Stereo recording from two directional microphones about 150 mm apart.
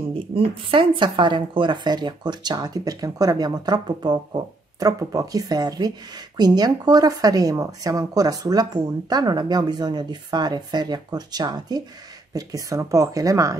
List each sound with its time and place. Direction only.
0.1 s speech: 35° right (ahead or behind)